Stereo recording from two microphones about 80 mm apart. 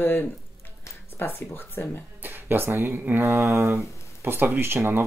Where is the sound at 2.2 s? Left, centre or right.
Right.